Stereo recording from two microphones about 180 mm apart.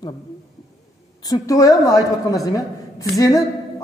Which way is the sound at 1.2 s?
20° left (ahead or behind).